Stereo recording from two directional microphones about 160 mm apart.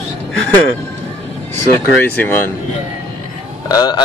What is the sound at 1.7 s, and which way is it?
Speech, 15° left (ahead or behind).